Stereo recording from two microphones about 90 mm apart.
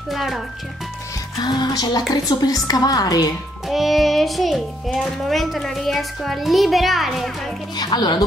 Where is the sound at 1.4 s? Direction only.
50° left (ahead or behind).